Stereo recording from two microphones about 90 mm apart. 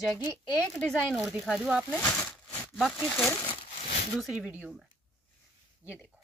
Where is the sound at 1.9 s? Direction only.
15° left (ahead or behind).